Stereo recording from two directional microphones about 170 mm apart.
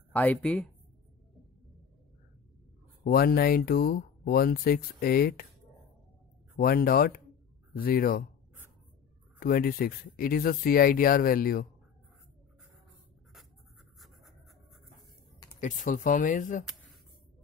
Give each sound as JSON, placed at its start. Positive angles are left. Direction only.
{"t": 0.1, "sound": "speech", "side_deg": 10}
{"t": 3.0, "sound": "speech", "side_deg": 65}
{"t": 6.5, "sound": "speech", "side_deg": 60}
{"t": 9.4, "sound": "speech", "side_deg": 60}
{"t": 13.9, "sound": "a sound", "side_deg": 0}
{"t": 15.6, "sound": "speech", "side_deg": 50}